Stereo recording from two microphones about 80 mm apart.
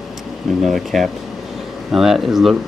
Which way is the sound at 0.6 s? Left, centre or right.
Centre.